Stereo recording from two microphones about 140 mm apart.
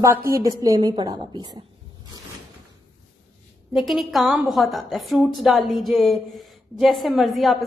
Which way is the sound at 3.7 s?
Centre (ahead or behind).